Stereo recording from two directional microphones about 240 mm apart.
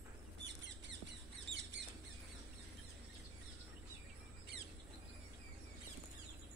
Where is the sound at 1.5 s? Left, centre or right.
Right.